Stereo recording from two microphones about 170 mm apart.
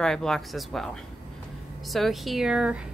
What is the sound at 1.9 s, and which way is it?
Speech, centre (ahead or behind).